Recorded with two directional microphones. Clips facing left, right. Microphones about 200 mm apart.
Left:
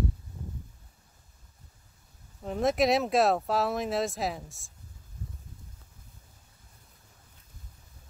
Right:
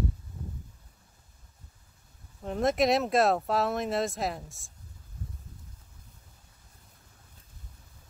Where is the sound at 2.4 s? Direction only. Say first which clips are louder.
Even; centre (ahead or behind).